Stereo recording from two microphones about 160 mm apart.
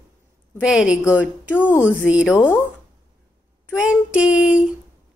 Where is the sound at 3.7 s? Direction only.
5° right (ahead or behind).